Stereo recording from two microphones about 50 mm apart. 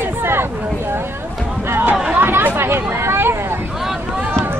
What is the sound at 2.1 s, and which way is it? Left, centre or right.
Chatter, right.